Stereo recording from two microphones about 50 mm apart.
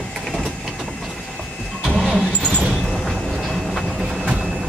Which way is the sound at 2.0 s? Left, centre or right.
Centre.